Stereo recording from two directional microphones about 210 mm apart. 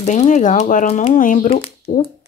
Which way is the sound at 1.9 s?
20° left (ahead or behind).